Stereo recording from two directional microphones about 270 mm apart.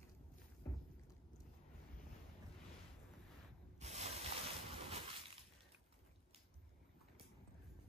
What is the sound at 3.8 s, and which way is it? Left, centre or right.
Spray, right.